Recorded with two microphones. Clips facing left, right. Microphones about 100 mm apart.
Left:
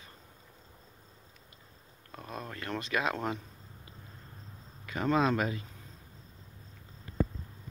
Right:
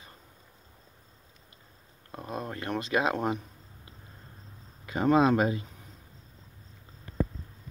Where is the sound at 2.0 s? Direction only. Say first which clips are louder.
Right 5 dB; 25° right (ahead or behind).